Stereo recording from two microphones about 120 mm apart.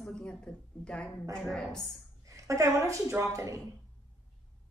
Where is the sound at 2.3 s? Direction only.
25° right (ahead or behind).